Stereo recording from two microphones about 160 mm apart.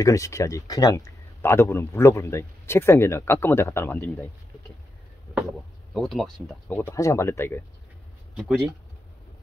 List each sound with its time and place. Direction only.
0.0 s speech: 20° left (ahead or behind)
5.9 s speech: centre (ahead or behind)
6.8 s speech: 15° left (ahead or behind)
8.4 s speech: centre (ahead or behind)